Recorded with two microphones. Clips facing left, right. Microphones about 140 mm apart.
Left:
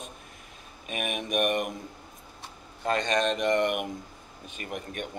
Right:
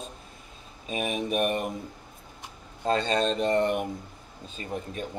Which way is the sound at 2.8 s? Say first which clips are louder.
Right 1 dB; 30° right (ahead or behind).